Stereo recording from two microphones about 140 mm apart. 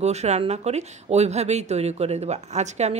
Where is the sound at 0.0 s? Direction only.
50° right (ahead or behind).